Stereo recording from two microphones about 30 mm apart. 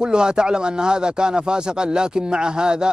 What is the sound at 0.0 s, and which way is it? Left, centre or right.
Speech, right.